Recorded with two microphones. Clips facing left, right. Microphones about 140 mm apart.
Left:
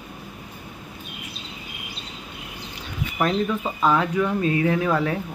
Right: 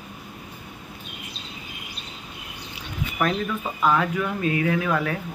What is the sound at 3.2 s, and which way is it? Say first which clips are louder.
Speech: left 3 dB; 30° left (ahead or behind).